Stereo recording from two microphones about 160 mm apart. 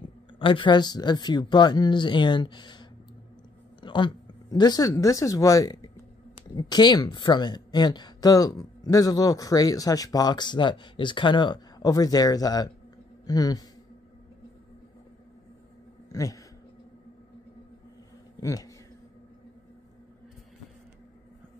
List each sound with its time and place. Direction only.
0.4 s speech: 30° left (ahead or behind)
16.1 s speech: 20° left (ahead or behind)
18.4 s speech: 20° left (ahead or behind)